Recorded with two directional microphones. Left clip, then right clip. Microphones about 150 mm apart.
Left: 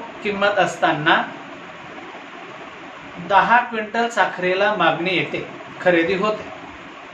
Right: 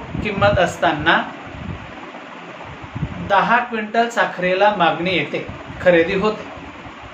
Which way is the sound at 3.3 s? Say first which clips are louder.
Left 1 dB; 20° right (ahead or behind).